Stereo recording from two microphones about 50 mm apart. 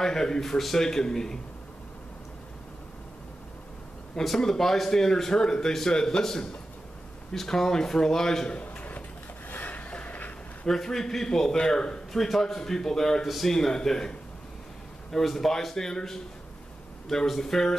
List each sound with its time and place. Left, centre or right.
0.0 s speech: centre
4.2 s speech: centre
8.5 s a sound: left
10.7 s speech: centre